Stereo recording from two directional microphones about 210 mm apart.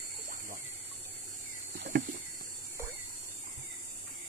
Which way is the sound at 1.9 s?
55° right (ahead or behind).